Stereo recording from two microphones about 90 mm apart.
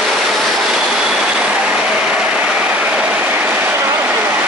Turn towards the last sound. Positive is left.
turn(degrees=-20)  # may be behind; listen again after turning